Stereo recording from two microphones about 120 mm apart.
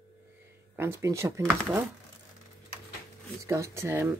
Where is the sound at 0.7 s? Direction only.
20° right (ahead or behind).